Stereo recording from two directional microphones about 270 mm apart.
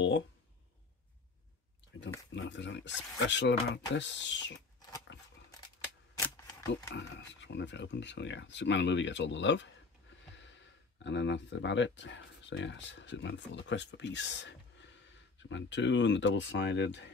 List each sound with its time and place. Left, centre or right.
2.3 s speech: left
5.1 s a sound: left
6.1 s camera: centre
7.0 s speech: left
11.1 s speech: left